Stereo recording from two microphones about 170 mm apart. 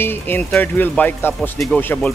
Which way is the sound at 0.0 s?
10° left (ahead or behind).